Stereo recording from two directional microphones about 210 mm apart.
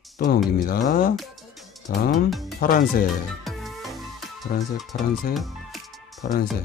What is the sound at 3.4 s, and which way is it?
Music, centre (ahead or behind).